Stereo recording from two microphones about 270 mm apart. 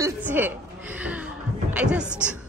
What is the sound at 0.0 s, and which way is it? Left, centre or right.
Chuckle, centre.